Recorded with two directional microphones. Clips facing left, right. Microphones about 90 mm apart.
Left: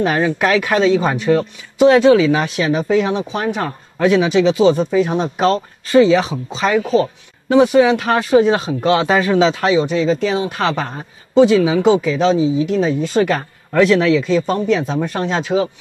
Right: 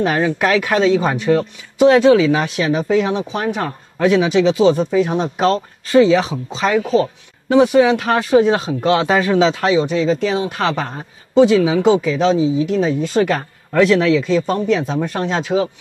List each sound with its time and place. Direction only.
0.0 s speech: 20° left (ahead or behind)